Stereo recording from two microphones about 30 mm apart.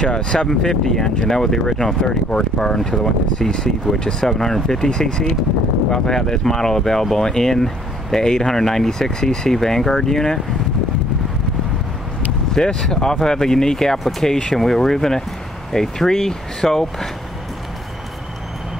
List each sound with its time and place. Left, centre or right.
0.0 s speech: left
0.5 s speech: centre
12.5 s speech: centre
14.5 s speech: centre